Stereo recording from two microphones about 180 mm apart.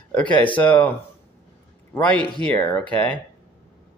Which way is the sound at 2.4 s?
15° left (ahead or behind).